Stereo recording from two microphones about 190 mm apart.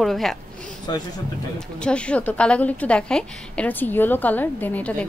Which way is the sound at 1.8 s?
5° left (ahead or behind).